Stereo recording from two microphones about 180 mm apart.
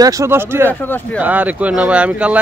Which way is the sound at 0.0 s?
20° right (ahead or behind).